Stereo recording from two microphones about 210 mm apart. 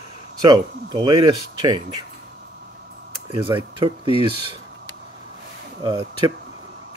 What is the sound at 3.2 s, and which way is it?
Speech, 25° right (ahead or behind).